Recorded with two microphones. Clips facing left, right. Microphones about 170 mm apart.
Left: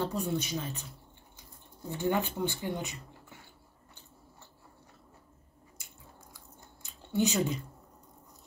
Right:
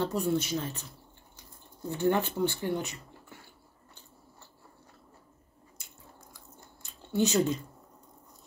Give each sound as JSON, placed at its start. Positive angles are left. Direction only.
{"t": 0.0, "sound": "speech", "side_deg": 15}
{"t": 1.9, "sound": "speech", "side_deg": 15}
{"t": 7.1, "sound": "speech", "side_deg": 15}